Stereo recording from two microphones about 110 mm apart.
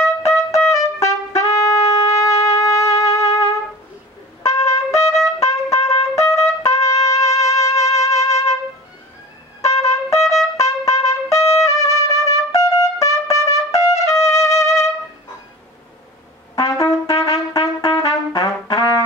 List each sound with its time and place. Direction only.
0.2 s trumpet: 30° left (ahead or behind)
4.4 s trumpet: 30° left (ahead or behind)
8.2 s music: 30° left (ahead or behind)
9.7 s trumpet: 30° left (ahead or behind)
16.5 s trumpet: 30° left (ahead or behind)